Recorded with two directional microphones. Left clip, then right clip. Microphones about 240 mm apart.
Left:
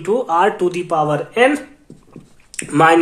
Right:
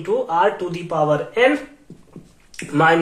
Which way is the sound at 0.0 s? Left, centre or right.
Left.